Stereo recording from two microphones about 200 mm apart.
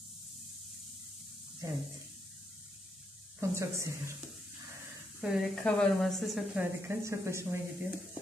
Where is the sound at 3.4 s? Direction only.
15° right (ahead or behind).